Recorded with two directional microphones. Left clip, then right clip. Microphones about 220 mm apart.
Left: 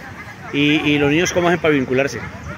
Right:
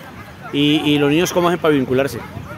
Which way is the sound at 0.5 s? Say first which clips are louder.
Even; 15° right (ahead or behind).